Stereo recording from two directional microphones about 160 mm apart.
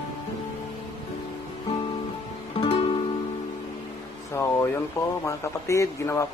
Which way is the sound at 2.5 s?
35° left (ahead or behind).